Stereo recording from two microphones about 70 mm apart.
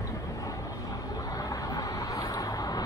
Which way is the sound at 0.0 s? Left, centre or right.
Left.